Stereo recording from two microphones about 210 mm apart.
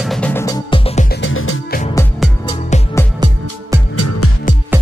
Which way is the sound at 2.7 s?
35° left (ahead or behind).